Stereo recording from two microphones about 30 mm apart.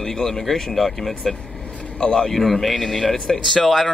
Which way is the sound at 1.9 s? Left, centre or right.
Left.